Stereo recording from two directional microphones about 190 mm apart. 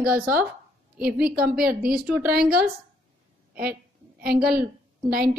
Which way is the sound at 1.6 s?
50° right (ahead or behind).